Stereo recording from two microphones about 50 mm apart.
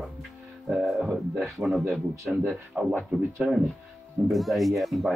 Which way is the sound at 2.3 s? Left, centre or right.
Centre.